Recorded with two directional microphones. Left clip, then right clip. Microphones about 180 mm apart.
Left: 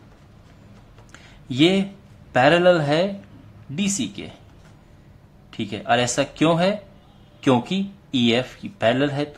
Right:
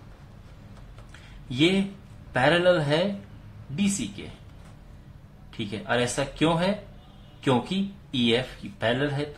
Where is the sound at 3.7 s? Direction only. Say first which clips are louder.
Left 4 dB; 40° left (ahead or behind).